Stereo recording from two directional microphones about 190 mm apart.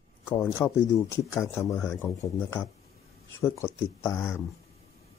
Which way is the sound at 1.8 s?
5° left (ahead or behind).